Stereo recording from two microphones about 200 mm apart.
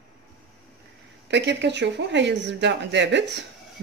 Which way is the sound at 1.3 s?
60° right (ahead or behind).